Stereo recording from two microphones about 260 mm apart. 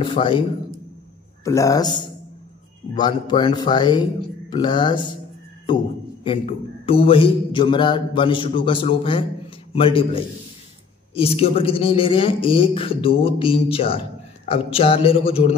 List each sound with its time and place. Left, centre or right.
0.0 s speech: centre
6.2 s a man's voice: left